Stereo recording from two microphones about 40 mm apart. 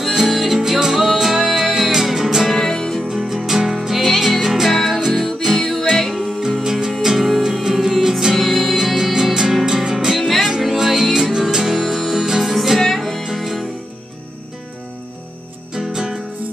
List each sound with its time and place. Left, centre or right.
0.1 s music: centre
2.5 s music: centre
3.2 s music: centre
6.6 s music: centre
8.7 s music: centre
15.7 s music: centre